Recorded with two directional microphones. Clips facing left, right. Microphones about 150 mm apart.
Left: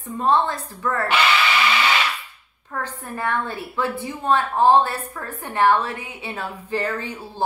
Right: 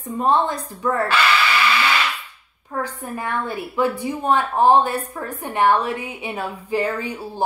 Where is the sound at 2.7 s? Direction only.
10° right (ahead or behind).